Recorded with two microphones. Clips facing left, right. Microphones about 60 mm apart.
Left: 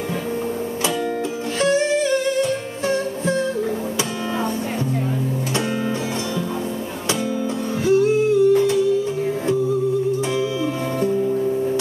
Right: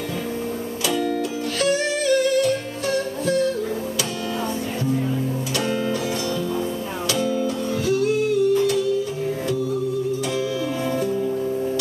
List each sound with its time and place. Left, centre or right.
1.6 s music: left
7.8 s music: left